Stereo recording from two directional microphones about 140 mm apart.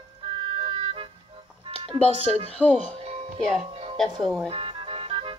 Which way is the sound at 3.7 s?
40° right (ahead or behind).